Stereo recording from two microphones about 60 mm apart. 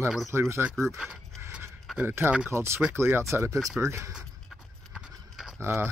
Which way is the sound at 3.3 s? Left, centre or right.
Right.